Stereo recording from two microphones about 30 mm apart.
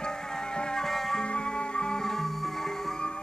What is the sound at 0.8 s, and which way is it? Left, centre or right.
Music, centre.